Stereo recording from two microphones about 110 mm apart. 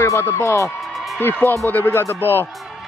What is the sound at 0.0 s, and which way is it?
Speech, 25° left (ahead or behind).